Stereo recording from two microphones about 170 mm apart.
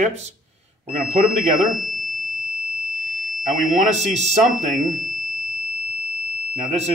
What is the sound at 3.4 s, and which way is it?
Speech, 40° right (ahead or behind).